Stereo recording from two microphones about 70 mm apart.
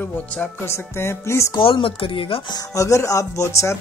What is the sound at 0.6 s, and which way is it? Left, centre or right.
Speech, left.